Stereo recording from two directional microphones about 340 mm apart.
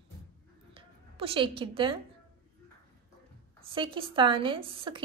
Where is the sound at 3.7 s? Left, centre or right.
Centre.